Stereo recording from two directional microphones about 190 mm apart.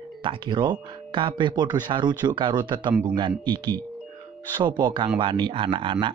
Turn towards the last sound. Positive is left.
turn(degrees=-25)  # may be behind; listen again after turning